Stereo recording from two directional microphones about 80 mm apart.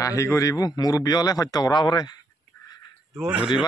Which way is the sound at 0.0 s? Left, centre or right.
Left.